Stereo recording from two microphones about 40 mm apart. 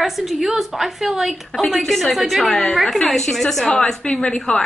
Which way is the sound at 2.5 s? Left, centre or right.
Left.